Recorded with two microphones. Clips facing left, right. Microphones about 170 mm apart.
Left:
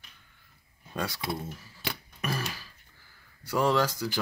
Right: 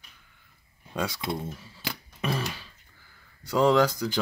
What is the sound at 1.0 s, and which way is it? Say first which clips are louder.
Speech: right 3 dB; 20° right (ahead or behind).